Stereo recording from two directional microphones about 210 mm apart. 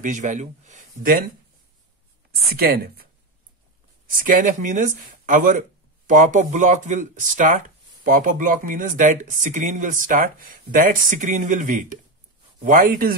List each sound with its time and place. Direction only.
0.0 s speech: 35° right (ahead or behind)
2.5 s speech: 45° right (ahead or behind)
4.3 s speech: 40° right (ahead or behind)